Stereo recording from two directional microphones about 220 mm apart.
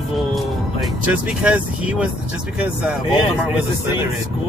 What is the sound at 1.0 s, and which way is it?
Speech, 5° right (ahead or behind).